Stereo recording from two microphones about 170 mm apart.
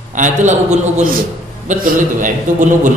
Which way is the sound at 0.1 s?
45° right (ahead or behind).